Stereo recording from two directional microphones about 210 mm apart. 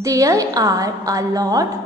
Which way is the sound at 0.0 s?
15° right (ahead or behind).